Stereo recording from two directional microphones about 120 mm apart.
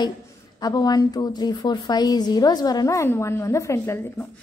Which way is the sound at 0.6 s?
35° left (ahead or behind).